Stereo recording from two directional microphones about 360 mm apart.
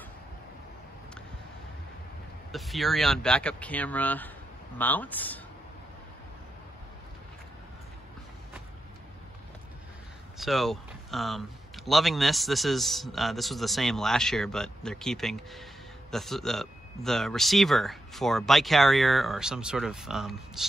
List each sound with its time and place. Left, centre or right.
2.5 s a man's voice: centre
10.3 s a man's voice: centre